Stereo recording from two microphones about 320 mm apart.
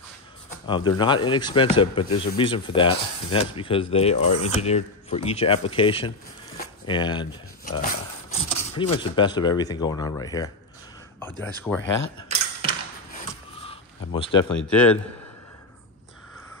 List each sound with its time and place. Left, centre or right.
0.7 s speech: centre
13.6 s a sound: centre
14.5 s speech: centre